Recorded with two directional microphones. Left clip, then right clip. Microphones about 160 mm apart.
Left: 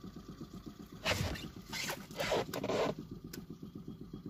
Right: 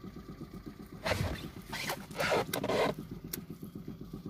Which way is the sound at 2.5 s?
40° right (ahead or behind).